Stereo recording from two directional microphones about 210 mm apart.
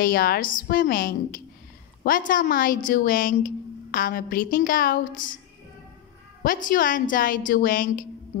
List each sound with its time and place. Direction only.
0.0 s a woman's voice: 45° left (ahead or behind)
6.4 s a woman's voice: 40° left (ahead or behind)